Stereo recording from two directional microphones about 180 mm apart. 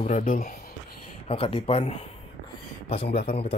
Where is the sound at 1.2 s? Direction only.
30° left (ahead or behind).